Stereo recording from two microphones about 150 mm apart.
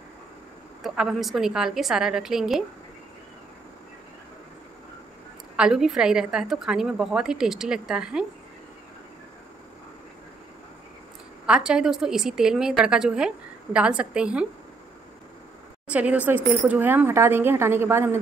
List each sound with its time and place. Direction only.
0.8 s a woman's voice: centre (ahead or behind)
5.6 s a woman's voice: 5° right (ahead or behind)
11.4 s a woman's voice: 5° right (ahead or behind)
15.9 s a woman's voice: 10° right (ahead or behind)